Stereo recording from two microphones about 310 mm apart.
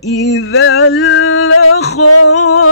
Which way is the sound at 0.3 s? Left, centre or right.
Left.